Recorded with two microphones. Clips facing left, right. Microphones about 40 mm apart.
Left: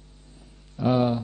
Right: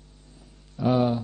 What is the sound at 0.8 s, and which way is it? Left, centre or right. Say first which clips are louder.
Speech: even; left.